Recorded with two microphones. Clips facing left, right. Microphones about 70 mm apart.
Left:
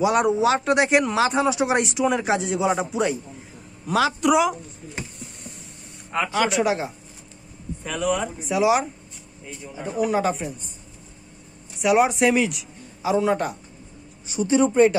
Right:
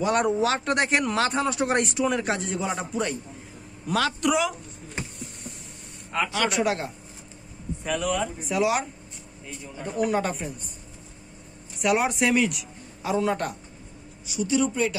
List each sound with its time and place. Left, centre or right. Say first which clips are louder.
0.0 s a man's voice: left 4 dB; centre
6.1 s speech: left 3 dB; centre
11.8 s speech: left 5 dB; centre
14.2 s speech: left 5 dB; left